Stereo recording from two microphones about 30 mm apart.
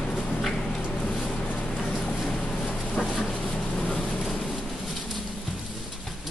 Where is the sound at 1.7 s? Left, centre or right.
Left.